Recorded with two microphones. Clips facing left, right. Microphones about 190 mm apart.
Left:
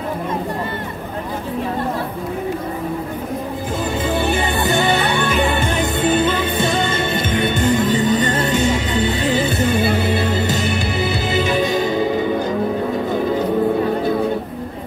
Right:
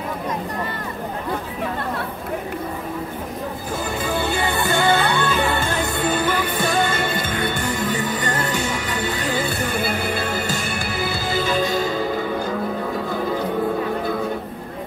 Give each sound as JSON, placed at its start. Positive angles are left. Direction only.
{"t": 4.0, "sound": "music", "side_deg": 20}